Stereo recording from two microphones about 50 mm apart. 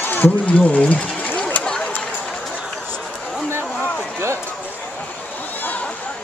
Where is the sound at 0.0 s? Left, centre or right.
Left.